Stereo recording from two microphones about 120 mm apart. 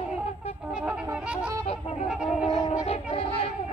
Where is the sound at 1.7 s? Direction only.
60° left (ahead or behind).